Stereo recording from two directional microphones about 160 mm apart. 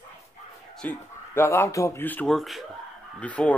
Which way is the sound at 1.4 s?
15° left (ahead or behind).